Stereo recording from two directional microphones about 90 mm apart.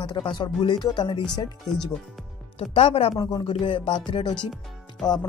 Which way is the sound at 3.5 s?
80° left.